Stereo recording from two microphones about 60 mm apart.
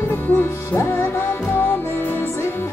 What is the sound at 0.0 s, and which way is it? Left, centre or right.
Music, left.